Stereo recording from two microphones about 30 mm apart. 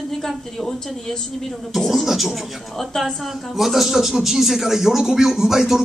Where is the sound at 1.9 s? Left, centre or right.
Centre.